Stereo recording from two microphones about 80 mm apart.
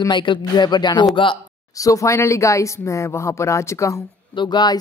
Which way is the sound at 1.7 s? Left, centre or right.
Left.